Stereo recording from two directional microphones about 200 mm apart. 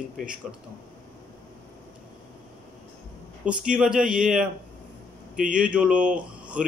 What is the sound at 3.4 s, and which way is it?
Speech, 5° right (ahead or behind).